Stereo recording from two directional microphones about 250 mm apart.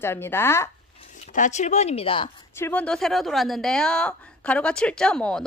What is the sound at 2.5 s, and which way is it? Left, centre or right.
A woman's voice, centre.